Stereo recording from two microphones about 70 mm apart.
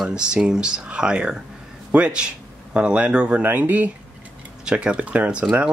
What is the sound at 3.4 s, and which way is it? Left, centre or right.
Speech, right.